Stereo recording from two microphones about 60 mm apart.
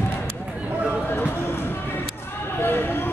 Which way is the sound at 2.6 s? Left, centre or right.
Left.